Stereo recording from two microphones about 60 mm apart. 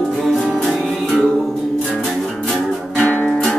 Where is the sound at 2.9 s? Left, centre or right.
Left.